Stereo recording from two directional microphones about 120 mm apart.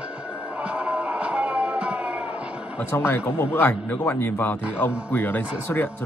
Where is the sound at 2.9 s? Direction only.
20° left (ahead or behind).